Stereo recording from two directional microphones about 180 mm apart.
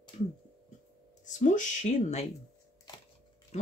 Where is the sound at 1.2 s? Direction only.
45° left (ahead or behind).